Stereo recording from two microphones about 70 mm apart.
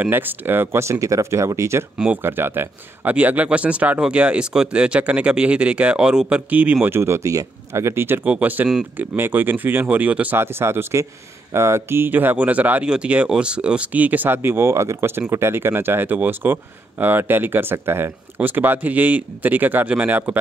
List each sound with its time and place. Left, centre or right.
0.0 s speech: right
2.2 s speech: right
6.9 s speech: right
8.2 s speech: right
10.4 s speech: right